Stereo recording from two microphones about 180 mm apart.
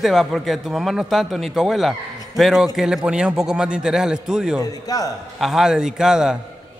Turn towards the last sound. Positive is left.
turn(degrees=-5)  # may be behind; listen again after turning